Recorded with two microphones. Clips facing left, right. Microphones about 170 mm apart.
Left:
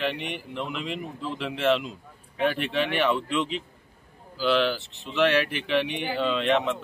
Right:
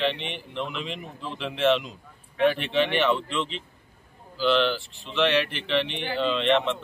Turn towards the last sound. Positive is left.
turn(degrees=5)  # may be behind; listen again after turning